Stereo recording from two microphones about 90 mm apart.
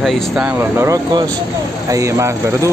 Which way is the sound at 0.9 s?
50° right (ahead or behind).